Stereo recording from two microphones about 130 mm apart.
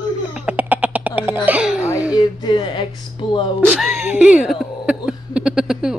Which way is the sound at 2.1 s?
35° left (ahead or behind).